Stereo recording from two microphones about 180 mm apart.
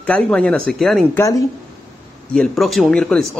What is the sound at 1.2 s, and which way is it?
Speech, 20° left (ahead or behind).